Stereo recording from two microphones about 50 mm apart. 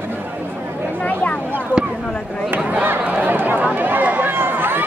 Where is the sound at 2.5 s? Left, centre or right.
Right.